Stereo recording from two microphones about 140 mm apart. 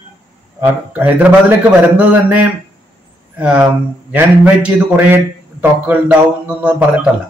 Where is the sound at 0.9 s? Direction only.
10° right (ahead or behind).